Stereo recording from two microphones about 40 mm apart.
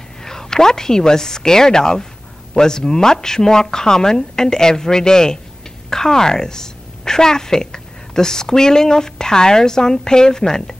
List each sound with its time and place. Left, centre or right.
0.2 s a woman's voice: centre